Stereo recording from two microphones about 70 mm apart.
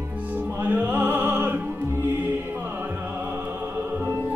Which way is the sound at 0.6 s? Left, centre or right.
Right.